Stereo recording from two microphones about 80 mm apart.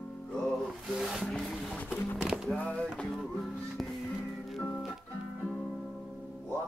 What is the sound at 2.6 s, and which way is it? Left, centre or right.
Music, centre.